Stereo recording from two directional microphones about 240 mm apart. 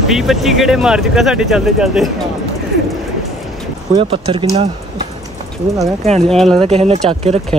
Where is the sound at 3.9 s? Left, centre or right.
Right.